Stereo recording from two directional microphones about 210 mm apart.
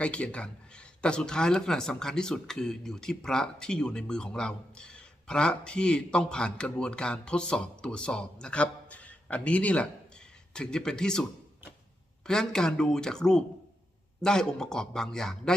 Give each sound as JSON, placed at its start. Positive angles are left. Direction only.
{"t": 0.0, "sound": "speech", "side_deg": 5}
{"t": 12.3, "sound": "speech", "side_deg": 5}